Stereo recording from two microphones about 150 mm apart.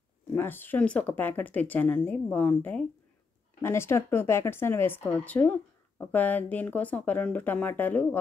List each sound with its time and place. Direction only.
0.3 s speech: 15° left (ahead or behind)